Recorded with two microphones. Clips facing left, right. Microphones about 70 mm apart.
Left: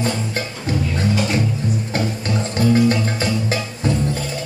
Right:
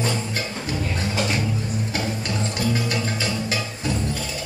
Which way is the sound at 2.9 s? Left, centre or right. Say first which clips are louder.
Left 5 dB; left.